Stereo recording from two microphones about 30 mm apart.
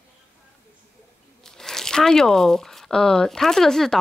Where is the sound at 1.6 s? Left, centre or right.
Centre.